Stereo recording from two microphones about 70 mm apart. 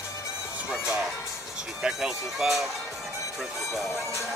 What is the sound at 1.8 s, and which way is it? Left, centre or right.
Speech, centre.